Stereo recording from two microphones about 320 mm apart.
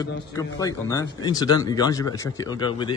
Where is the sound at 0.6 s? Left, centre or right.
Centre.